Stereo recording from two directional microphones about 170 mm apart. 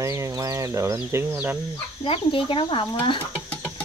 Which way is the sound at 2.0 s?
30° left (ahead or behind).